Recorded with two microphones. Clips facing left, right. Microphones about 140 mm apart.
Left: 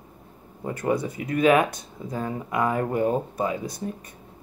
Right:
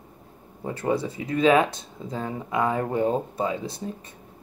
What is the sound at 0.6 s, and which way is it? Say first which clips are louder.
Speech: even; 25° right (ahead or behind).